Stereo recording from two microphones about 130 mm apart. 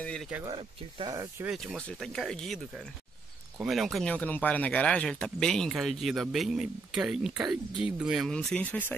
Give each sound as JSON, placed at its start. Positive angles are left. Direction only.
{"t": 0.0, "sound": "speech", "side_deg": 5}
{"t": 0.5, "sound": "speech", "side_deg": -35}
{"t": 1.6, "sound": "speech", "side_deg": 5}